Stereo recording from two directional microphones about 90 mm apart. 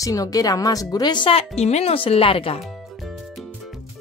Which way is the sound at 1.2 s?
90° left.